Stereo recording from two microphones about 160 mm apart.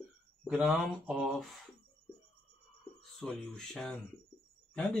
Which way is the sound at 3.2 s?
5° left (ahead or behind).